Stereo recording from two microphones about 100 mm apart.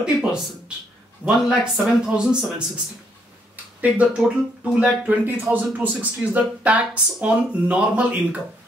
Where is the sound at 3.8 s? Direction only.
15° right (ahead or behind).